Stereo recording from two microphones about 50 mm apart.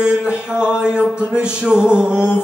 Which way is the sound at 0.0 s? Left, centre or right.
Centre.